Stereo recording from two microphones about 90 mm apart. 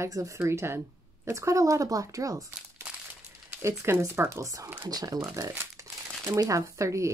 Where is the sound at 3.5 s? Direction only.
35° right (ahead or behind).